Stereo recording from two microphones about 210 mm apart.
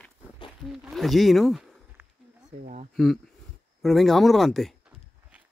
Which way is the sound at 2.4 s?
35° right (ahead or behind).